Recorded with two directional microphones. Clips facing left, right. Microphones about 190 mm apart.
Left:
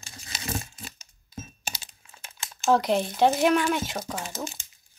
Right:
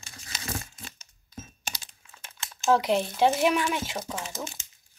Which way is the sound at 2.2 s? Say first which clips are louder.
Left 1 dB; 5° left (ahead or behind).